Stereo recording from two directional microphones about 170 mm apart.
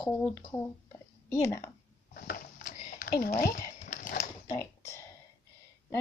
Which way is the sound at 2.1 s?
60° left (ahead or behind).